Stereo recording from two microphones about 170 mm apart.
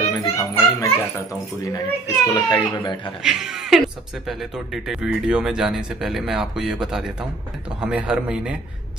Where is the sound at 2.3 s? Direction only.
25° left (ahead or behind).